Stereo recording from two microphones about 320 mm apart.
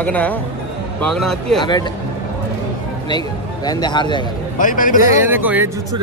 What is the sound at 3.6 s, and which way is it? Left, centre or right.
Speech, centre.